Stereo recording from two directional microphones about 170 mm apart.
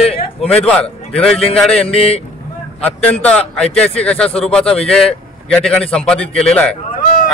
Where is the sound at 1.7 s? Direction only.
35° left (ahead or behind).